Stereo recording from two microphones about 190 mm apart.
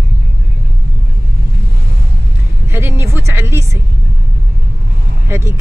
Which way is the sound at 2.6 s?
15° right (ahead or behind).